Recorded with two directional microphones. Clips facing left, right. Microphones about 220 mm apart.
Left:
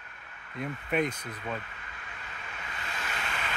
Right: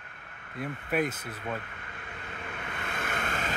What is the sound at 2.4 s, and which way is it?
Vehicle, 55° right (ahead or behind).